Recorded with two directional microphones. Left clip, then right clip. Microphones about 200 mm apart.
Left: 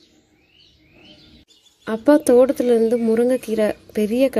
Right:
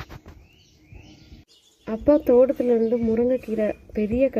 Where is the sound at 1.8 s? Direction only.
15° left (ahead or behind).